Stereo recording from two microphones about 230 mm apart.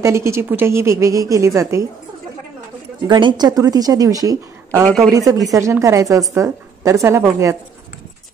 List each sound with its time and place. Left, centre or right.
0.0 s a woman's voice: centre
3.1 s a woman's voice: centre
4.8 s speech: centre
5.1 s a woman's voice: centre